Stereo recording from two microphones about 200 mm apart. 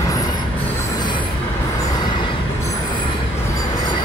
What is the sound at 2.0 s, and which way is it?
Vehicle, 25° left (ahead or behind).